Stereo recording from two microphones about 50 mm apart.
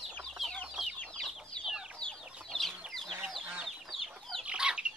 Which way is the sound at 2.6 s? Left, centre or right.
Centre.